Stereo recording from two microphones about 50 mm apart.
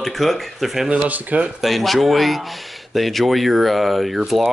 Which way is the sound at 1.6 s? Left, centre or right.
Centre.